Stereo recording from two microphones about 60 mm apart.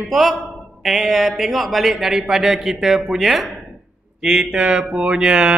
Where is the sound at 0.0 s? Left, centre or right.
Centre.